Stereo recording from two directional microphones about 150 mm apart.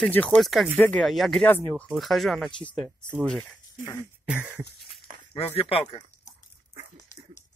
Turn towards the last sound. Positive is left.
turn(degrees=40)  # may be behind; listen again after turning